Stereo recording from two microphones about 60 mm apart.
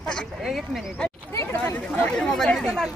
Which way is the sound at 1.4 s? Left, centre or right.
Left.